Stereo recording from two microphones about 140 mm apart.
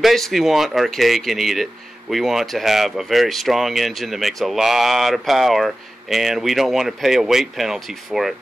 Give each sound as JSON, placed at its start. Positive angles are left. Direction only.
{"t": 0.0, "sound": "speech", "side_deg": 0}